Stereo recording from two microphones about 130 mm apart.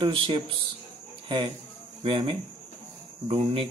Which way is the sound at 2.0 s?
40° right (ahead or behind).